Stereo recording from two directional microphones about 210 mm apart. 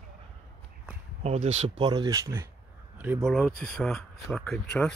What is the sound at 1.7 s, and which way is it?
Speech, 20° right (ahead or behind).